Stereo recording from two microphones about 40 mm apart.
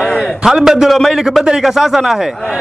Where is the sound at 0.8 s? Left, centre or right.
Centre.